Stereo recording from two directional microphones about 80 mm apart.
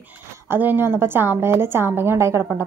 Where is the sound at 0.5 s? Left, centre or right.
Right.